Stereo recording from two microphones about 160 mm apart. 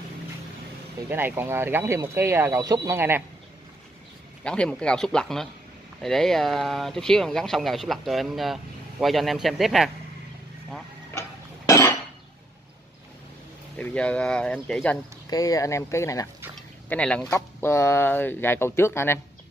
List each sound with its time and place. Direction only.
1.0 s speech: 15° right (ahead or behind)
4.5 s speech: 5° left (ahead or behind)
11.1 s a sound: 20° left (ahead or behind)
13.7 s speech: 10° left (ahead or behind)
15.2 s speech: 20° left (ahead or behind)
16.9 s speech: 5° left (ahead or behind)